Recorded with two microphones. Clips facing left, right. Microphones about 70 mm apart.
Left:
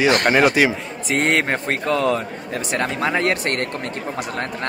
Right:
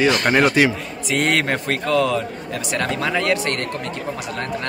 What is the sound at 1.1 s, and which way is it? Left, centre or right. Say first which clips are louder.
A man's voice: left 1 dB; left.